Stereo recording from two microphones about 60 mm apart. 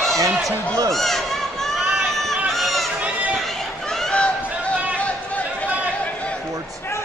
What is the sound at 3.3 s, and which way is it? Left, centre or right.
Chatter, centre.